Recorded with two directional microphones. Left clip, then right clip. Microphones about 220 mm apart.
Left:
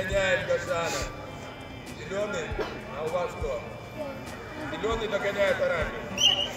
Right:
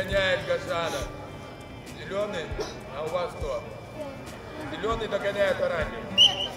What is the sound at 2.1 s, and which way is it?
Speech, 25° left (ahead or behind).